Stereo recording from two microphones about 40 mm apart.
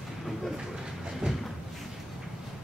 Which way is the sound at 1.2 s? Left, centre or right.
Right.